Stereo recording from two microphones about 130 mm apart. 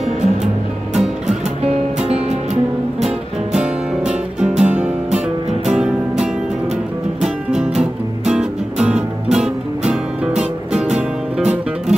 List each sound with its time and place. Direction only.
2.0 s music: 50° right (ahead or behind)
4.4 s music: 10° right (ahead or behind)
7.2 s music: 5° right (ahead or behind)